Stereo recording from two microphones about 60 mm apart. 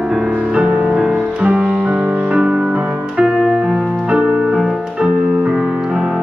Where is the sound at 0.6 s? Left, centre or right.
Right.